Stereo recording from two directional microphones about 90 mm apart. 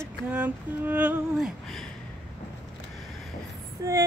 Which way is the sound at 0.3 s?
15° right (ahead or behind).